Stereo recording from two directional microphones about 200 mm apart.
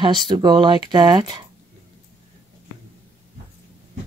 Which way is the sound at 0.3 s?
20° right (ahead or behind).